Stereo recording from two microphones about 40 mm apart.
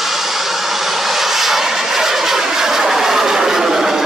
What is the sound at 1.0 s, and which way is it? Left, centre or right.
Vehicle, centre.